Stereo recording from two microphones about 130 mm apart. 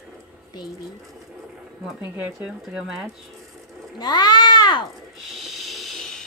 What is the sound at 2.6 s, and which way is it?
Speech, 5° right (ahead or behind).